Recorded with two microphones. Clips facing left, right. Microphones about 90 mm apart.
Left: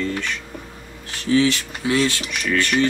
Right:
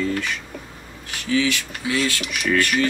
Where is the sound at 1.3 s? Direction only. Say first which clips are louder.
Left 4 dB; 30° left (ahead or behind).